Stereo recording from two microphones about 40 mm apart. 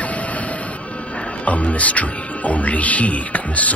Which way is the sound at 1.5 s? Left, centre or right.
Left.